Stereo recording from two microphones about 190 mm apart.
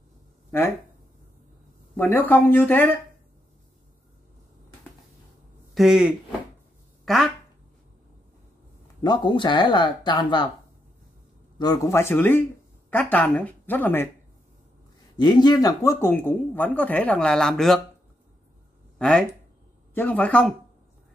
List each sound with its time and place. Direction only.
0.5 s speech: 10° left (ahead or behind)
2.0 s speech: 10° left (ahead or behind)
5.8 s speech: 5° right (ahead or behind)
9.0 s speech: 25° left (ahead or behind)
11.5 s speech: 20° left (ahead or behind)
15.1 s speech: 20° left (ahead or behind); by 17.8 s centre (ahead or behind)
18.9 s speech: 5° left (ahead or behind)